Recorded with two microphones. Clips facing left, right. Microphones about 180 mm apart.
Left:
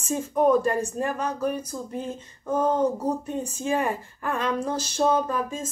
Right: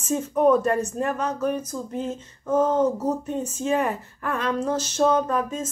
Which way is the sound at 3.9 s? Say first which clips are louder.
Even; 30° left (ahead or behind).